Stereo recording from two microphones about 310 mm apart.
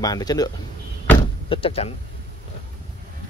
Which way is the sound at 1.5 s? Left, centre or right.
Centre.